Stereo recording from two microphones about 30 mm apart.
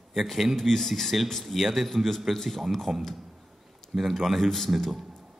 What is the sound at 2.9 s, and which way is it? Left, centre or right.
Speech, centre.